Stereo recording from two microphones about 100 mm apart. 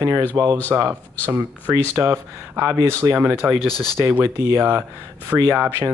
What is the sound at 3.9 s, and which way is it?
Speech, 20° right (ahead or behind).